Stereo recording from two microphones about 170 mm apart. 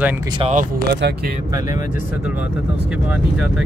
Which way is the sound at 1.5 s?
20° right (ahead or behind).